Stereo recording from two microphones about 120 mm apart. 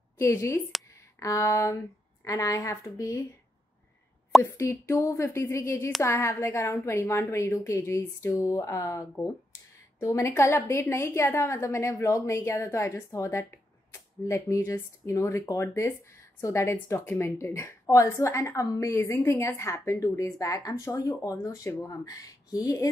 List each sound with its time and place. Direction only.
0.2 s a woman's voice: 25° left (ahead or behind)
4.4 s a woman's voice: 25° left (ahead or behind)